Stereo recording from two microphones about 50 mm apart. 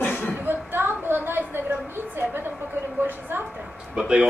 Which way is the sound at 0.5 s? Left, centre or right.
Right.